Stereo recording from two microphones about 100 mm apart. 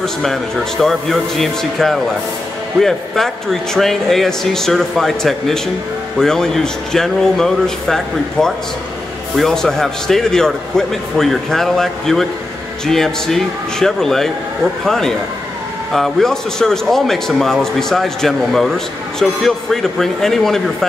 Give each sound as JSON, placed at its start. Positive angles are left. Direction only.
{"t": 0.0, "sound": "a man's voice", "side_deg": 5}
{"t": 3.7, "sound": "a man's voice", "side_deg": 5}